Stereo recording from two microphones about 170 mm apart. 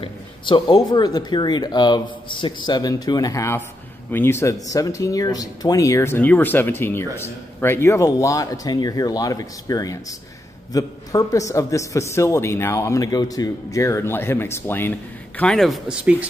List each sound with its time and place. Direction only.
0.0 s a man's voice: 30° left (ahead or behind); by 16.3 s 5° right (ahead or behind)